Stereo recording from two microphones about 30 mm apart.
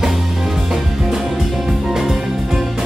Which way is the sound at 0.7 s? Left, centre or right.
Centre.